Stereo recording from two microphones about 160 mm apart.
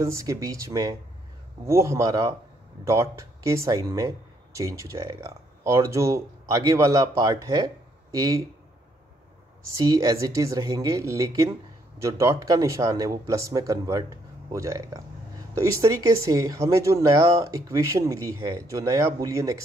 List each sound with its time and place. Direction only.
0.0 s speech: 20° right (ahead or behind)
9.8 s speech: 20° right (ahead or behind)